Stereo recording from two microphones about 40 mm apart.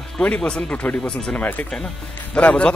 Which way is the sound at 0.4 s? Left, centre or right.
Left.